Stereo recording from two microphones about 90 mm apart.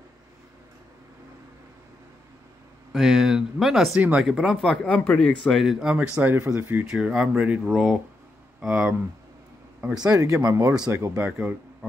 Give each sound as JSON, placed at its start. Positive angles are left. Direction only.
{"t": 2.9, "sound": "speech", "side_deg": -5}
{"t": 4.8, "sound": "speech", "side_deg": 15}
{"t": 5.4, "sound": "speech", "side_deg": 0}
{"t": 6.9, "sound": "speech", "side_deg": -5}
{"t": 9.9, "sound": "speech", "side_deg": -45}
{"t": 11.1, "sound": "speech", "side_deg": -15}